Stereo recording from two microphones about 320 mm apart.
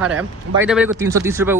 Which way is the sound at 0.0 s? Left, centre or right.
Centre.